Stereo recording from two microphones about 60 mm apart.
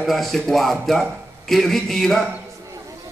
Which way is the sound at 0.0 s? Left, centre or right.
Centre.